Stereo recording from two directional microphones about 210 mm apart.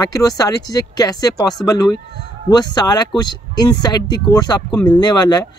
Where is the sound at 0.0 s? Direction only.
15° left (ahead or behind).